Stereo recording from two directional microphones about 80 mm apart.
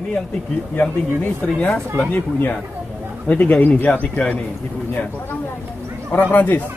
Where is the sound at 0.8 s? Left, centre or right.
Centre.